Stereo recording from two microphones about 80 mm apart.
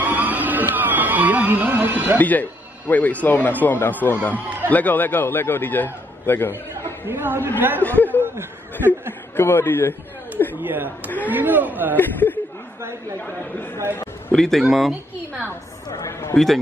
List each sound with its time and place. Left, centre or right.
0.0 s music: right
2.1 s a man's voice: left
7.1 s speech: right
7.8 s speech: left
8.2 s chuckle: right
9.4 s a man's voice: left
10.5 s speech: right
12.0 s a man's voice: left
14.3 s speech: centre
15.9 s speech: left